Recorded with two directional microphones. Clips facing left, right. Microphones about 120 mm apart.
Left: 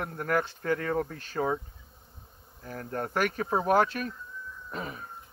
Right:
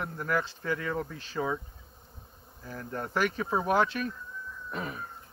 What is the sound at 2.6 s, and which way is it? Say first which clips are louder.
Speech: left 2 dB; 50° left (ahead or behind).